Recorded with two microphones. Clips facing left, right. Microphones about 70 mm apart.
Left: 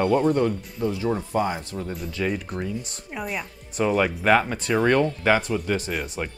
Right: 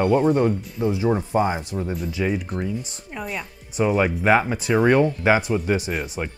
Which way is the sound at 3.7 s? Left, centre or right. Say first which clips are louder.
Right 2 dB; centre.